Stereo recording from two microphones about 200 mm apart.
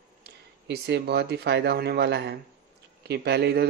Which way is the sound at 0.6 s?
55° right (ahead or behind).